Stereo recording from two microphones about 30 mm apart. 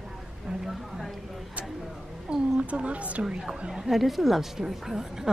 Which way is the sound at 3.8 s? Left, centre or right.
Centre.